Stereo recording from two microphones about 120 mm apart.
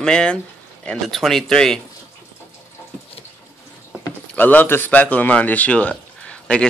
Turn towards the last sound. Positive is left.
turn(degrees=10)  # may be behind; listen again after turning